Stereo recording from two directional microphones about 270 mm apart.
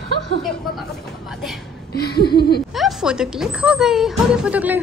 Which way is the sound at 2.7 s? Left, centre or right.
Centre.